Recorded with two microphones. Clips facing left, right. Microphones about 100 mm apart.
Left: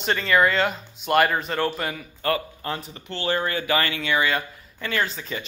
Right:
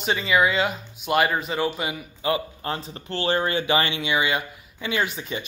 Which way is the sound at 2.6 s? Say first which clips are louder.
Right 1 dB; 30° right (ahead or behind).